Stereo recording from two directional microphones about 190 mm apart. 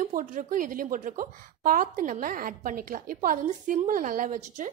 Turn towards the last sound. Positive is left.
turn(degrees=-40)  # may be behind; listen again after turning